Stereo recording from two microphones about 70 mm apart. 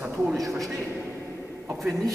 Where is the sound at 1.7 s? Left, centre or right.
Centre.